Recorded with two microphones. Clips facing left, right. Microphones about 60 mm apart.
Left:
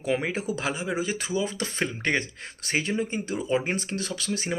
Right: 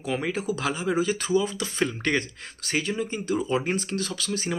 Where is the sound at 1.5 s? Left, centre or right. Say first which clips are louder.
Right 2 dB; left.